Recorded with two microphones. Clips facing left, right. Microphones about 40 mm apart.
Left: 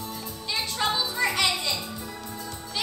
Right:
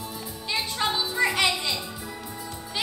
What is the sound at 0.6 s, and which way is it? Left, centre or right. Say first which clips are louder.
Music: even; centre.